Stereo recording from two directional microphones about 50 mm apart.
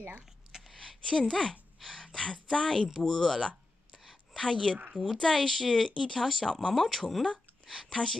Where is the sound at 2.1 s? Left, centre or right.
Centre.